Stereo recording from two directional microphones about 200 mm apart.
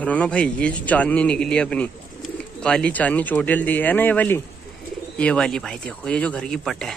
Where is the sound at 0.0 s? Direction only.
5° left (ahead or behind).